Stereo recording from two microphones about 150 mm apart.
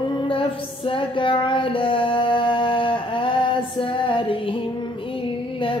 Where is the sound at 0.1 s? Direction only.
35° left (ahead or behind).